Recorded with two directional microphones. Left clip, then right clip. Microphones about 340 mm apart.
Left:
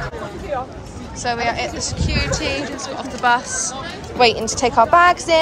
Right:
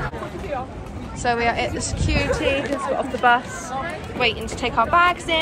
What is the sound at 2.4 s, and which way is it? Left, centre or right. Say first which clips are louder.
Speech: right 1 dB; left.